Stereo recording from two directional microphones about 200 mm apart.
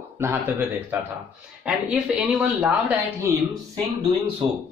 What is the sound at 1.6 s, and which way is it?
Speech, 5° right (ahead or behind).